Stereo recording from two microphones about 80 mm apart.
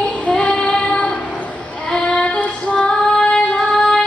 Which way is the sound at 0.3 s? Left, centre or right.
Centre.